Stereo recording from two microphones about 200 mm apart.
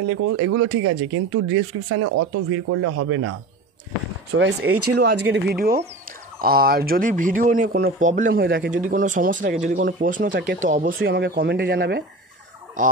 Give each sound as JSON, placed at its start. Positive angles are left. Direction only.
{"t": 0.0, "sound": "speech", "side_deg": -90}
{"t": 4.3, "sound": "speech", "side_deg": -60}
{"t": 10.3, "sound": "speech", "side_deg": -70}
{"t": 10.7, "sound": "speech", "side_deg": -40}